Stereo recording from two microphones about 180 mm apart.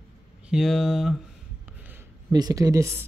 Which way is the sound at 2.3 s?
20° right (ahead or behind).